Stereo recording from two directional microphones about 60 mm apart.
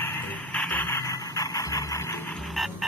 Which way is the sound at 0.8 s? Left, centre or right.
Left.